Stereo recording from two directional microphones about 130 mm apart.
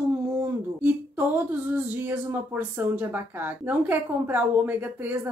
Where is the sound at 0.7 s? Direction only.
15° right (ahead or behind).